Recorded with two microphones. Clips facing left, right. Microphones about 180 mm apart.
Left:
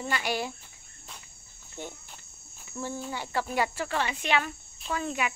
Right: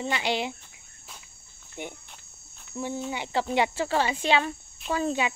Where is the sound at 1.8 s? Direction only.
15° right (ahead or behind).